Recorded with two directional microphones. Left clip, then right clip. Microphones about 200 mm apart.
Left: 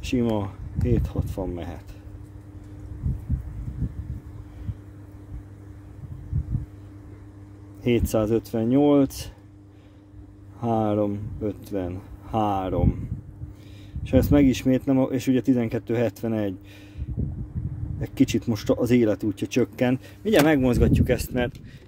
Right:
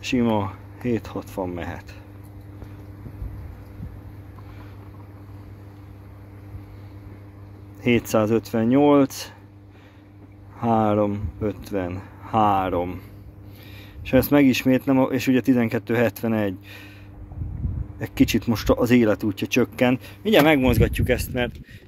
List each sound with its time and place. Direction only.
0.0 s speech: 25° left (ahead or behind)
7.8 s speech: 20° left (ahead or behind)
10.6 s speech: 25° left (ahead or behind)
14.0 s speech: 20° left (ahead or behind)
17.9 s speech: 20° left (ahead or behind)